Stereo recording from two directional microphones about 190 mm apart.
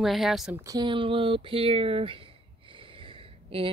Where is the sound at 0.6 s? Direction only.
20° right (ahead or behind).